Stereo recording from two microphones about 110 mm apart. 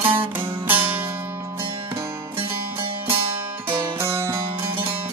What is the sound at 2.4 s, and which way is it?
Music, 55° right (ahead or behind).